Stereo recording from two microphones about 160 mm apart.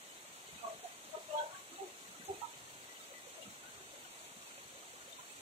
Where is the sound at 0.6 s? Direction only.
45° right (ahead or behind).